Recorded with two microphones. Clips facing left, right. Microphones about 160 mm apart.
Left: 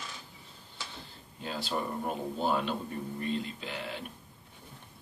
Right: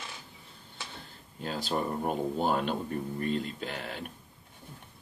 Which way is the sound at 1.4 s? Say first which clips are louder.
Right 2 dB; 45° right (ahead or behind).